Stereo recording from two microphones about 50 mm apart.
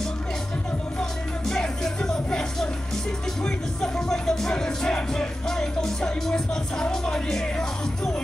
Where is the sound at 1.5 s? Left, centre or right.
Centre.